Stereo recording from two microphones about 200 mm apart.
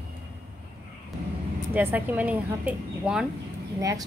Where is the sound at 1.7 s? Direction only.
10° right (ahead or behind).